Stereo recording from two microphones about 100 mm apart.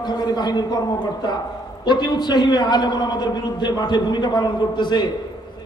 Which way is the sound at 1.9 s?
45° left (ahead or behind).